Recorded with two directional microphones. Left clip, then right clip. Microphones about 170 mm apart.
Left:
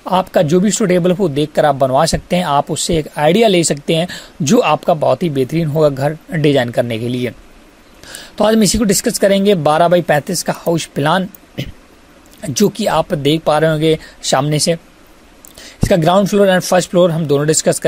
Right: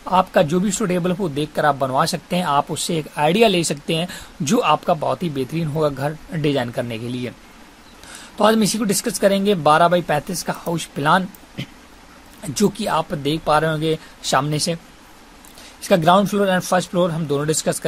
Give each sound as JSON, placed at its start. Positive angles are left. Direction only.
{"t": 0.0, "sound": "speech", "side_deg": 35}
{"t": 15.8, "sound": "speech", "side_deg": 35}